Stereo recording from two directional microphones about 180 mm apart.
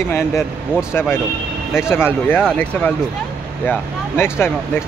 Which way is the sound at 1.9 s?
10° left (ahead or behind).